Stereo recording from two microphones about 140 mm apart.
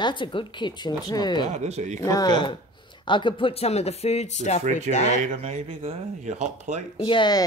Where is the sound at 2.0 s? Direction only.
25° left (ahead or behind); by 4.6 s 55° left (ahead or behind).